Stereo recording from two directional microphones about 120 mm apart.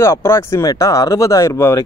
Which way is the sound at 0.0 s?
20° left (ahead or behind).